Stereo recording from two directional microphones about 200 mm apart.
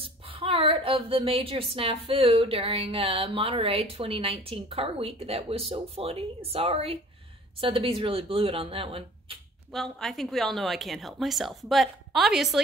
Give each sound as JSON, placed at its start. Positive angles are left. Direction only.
{"t": 0.0, "sound": "a woman's voice", "side_deg": -25}
{"t": 9.7, "sound": "speech", "side_deg": 0}